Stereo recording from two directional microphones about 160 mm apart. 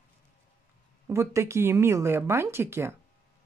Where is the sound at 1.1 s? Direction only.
15° right (ahead or behind).